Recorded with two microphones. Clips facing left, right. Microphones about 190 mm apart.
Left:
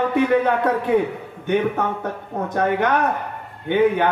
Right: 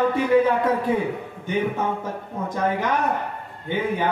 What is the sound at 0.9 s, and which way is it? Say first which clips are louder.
A man's voice: left 4 dB; 65° left (ahead or behind).